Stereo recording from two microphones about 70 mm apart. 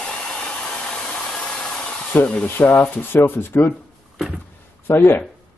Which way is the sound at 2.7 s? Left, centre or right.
Left.